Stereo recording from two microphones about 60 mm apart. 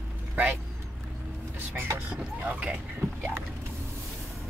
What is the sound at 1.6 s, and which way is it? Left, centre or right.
Speech, right.